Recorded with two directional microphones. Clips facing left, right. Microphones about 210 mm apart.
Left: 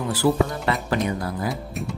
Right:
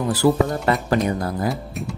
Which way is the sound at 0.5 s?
45° right (ahead or behind).